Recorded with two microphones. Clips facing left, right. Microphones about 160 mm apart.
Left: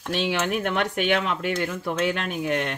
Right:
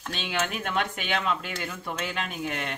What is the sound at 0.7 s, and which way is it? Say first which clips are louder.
Speech: left 6 dB; 65° left (ahead or behind).